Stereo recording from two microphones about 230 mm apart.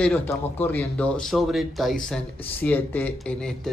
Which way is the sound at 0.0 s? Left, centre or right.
Centre.